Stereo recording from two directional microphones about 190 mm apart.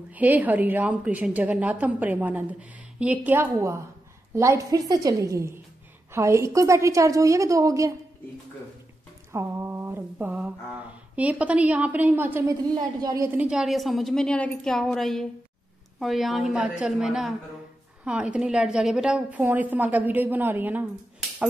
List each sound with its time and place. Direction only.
0.1 s a woman's voice: 10° right (ahead or behind)
9.3 s mantra: 15° right (ahead or behind)
11.1 s a woman's voice: 5° right (ahead or behind)